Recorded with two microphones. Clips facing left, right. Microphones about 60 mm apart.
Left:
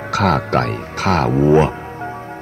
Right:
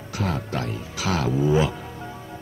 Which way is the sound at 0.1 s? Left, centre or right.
Left.